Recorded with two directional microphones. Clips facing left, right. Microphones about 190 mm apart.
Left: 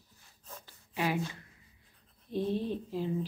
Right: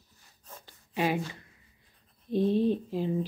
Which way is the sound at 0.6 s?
20° right (ahead or behind).